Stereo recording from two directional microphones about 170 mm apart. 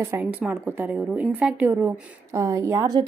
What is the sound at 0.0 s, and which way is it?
A woman's voice, 10° right (ahead or behind).